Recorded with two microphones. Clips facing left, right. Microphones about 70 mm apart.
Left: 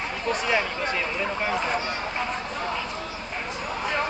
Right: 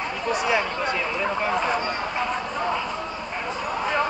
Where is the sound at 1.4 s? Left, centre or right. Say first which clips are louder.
Right 2 dB; centre.